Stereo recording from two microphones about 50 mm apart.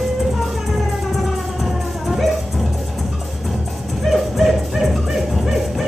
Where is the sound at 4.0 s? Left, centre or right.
Centre.